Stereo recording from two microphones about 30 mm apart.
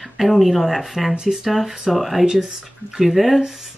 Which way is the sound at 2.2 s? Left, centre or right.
Centre.